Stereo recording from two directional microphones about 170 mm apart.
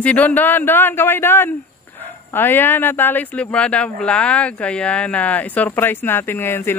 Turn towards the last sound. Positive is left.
turn(degrees=15)  # may be behind; listen again after turning